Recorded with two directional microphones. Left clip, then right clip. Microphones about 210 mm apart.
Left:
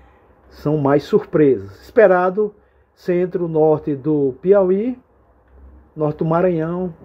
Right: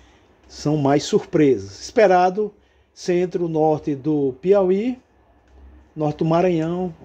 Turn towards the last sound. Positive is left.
turn(degrees=-10)  # may be behind; listen again after turning